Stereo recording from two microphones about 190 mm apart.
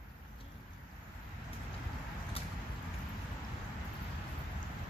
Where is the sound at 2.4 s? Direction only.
30° left (ahead or behind).